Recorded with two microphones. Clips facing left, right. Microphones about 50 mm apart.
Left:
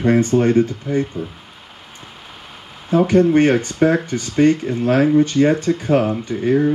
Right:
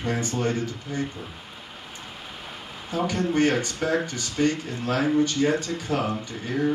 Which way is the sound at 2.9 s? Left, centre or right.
Left.